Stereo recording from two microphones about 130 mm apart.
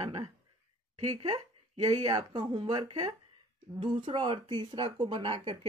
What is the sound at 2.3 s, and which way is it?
A woman's voice, 30° right (ahead or behind).